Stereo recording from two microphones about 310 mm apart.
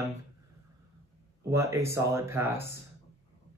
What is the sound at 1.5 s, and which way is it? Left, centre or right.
A man's voice, centre.